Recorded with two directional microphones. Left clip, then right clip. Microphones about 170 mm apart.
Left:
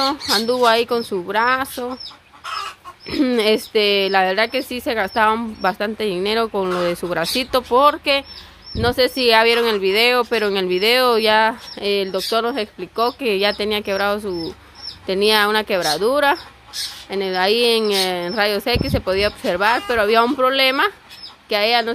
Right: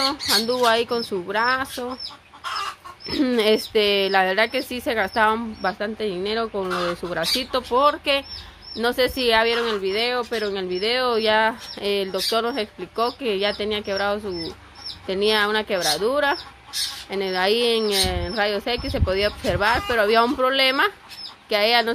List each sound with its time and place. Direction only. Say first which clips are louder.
0.0 s speech: left 2 dB; 25° left (ahead or behind)
3.1 s speech: left 2 dB; 20° left (ahead or behind)